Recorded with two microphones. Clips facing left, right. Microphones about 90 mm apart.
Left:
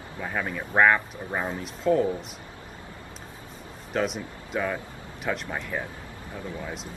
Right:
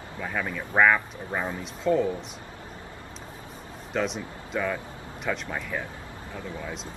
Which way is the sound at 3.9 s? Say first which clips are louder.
Left 1 dB; 5° left (ahead or behind).